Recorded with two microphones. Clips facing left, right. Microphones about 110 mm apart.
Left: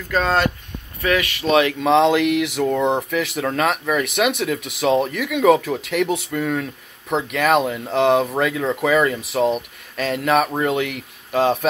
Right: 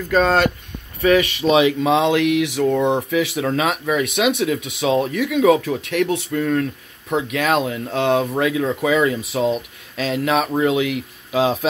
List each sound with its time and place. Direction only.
0.1 s speech: 25° right (ahead or behind)
1.4 s speech: 10° right (ahead or behind)